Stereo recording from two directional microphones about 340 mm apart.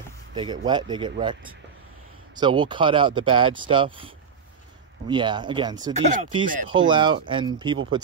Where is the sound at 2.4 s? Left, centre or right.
Centre.